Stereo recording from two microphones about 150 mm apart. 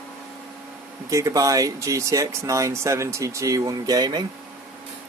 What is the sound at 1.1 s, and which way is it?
Speech, 20° right (ahead or behind).